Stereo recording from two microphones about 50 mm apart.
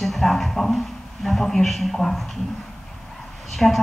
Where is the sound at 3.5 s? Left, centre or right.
Centre.